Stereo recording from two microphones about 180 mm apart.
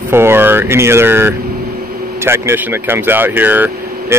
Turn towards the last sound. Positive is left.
turn(degrees=-10)  # may be behind; listen again after turning